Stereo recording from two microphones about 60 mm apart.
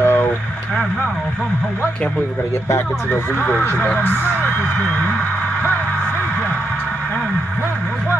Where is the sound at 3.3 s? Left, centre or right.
Left.